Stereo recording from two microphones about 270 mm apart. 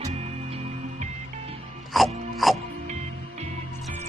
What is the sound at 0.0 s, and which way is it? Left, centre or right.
Music, right.